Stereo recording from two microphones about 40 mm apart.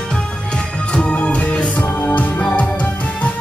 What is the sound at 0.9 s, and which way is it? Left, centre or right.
Music, left.